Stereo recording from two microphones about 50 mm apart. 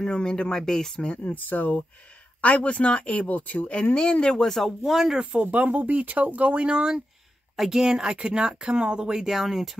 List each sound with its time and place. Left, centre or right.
0.0 s speech: centre
1.0 s speech: left; by 5.2 s centre
5.2 s speech: right
7.5 s a woman's voice: centre
7.8 s speech: centre